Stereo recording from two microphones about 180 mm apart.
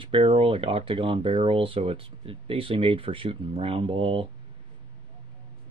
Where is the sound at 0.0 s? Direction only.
30° right (ahead or behind).